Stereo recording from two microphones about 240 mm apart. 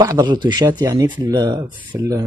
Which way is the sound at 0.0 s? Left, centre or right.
Centre.